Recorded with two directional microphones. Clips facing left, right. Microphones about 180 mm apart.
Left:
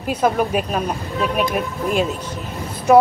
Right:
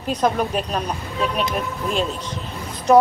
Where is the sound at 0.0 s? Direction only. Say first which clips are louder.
Left 2 dB; 10° left (ahead or behind).